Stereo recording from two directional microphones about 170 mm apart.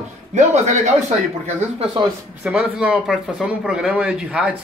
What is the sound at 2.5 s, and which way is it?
Speech, 5° right (ahead or behind).